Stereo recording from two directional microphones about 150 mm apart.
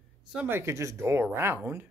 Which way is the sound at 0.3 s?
10° right (ahead or behind).